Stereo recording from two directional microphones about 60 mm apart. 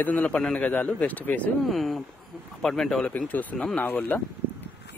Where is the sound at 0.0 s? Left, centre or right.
Left.